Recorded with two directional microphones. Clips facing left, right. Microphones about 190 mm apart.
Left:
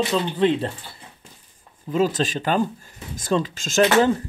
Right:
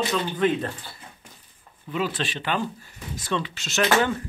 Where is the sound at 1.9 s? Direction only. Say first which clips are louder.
Left 7 dB; 40° left (ahead or behind).